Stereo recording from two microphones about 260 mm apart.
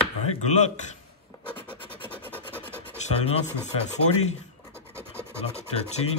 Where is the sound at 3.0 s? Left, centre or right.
Left.